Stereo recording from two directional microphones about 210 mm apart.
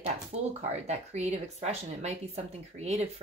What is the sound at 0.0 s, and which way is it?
Speech, 30° right (ahead or behind).